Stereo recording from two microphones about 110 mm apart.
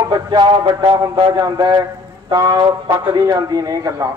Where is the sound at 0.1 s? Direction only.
40° right (ahead or behind).